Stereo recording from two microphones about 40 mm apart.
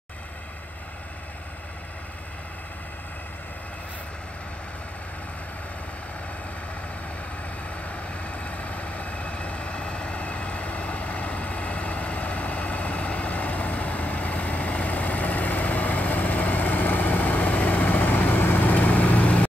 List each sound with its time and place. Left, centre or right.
7.7 s vehicle: left